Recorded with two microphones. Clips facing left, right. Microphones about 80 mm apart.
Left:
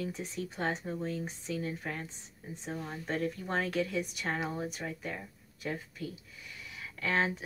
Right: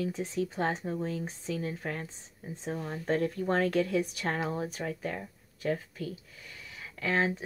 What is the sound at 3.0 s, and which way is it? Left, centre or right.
Speech, right.